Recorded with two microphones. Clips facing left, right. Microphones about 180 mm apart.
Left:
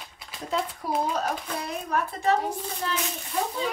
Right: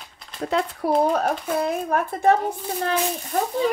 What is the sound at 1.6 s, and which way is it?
Speech, 50° right (ahead or behind).